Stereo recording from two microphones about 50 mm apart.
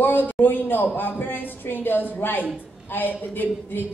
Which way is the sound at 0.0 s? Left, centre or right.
Left.